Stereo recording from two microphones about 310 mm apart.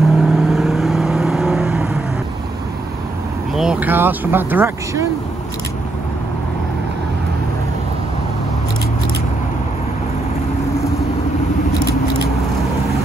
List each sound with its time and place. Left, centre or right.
0.0 s vehicle: centre
3.5 s speech: centre